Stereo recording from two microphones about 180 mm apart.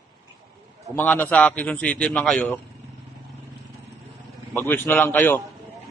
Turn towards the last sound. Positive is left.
turn(degrees=10)  # may be behind; listen again after turning